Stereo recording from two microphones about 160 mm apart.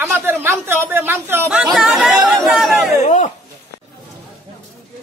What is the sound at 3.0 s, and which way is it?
Speech, 45° left (ahead or behind).